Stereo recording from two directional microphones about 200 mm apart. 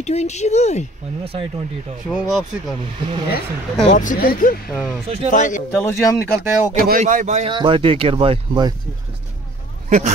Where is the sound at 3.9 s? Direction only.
40° left (ahead or behind).